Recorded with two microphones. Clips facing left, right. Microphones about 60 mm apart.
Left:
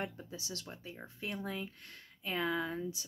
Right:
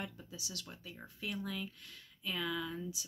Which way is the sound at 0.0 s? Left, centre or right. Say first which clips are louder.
Left 4 dB; left.